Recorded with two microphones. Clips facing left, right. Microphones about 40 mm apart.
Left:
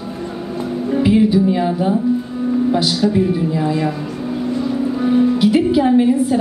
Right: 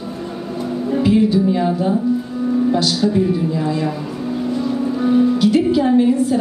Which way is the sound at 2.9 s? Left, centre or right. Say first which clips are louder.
Left 1 dB; centre.